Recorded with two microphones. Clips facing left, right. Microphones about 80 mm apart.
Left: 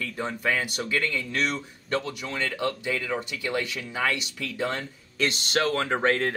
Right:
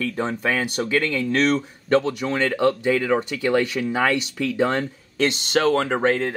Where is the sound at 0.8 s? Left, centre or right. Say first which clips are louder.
Right 6 dB; right.